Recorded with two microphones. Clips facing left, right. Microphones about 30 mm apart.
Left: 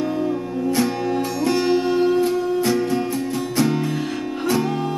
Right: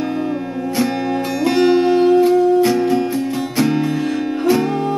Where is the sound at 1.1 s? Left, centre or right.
Right.